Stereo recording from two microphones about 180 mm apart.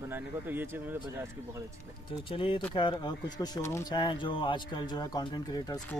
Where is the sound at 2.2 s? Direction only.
30° left (ahead or behind).